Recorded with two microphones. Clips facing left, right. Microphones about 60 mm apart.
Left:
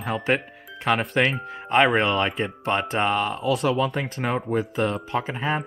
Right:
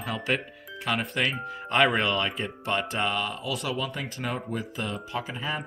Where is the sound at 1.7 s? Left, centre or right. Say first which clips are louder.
Left 4 dB; left.